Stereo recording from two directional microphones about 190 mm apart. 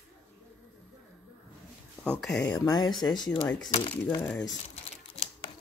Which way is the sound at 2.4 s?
20° left (ahead or behind).